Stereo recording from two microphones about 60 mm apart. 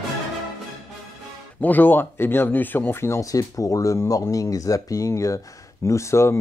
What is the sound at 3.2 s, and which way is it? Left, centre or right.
Speech, left.